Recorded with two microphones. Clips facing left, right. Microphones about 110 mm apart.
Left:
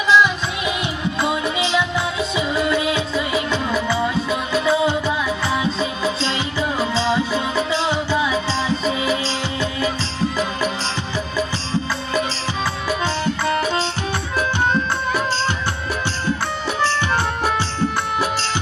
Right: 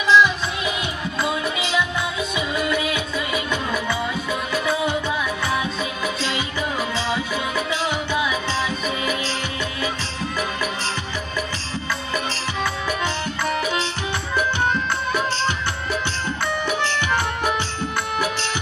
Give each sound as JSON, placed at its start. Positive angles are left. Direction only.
{"t": 0.1, "sound": "music", "side_deg": 15}